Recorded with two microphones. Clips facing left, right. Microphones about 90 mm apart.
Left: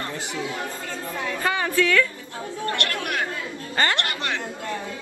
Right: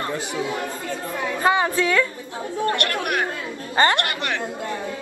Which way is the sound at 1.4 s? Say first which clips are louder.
Right 3 dB; 25° right (ahead or behind).